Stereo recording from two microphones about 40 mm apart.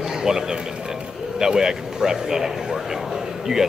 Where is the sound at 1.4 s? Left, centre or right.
Centre.